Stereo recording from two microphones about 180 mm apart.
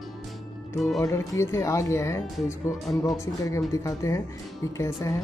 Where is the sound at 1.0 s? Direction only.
15° left (ahead or behind).